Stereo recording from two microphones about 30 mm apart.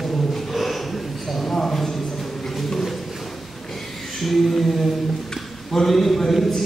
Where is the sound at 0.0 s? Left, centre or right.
Centre.